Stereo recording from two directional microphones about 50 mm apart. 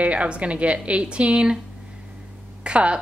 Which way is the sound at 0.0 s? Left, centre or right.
Right.